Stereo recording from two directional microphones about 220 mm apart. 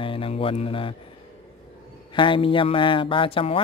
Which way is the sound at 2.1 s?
25° left (ahead or behind).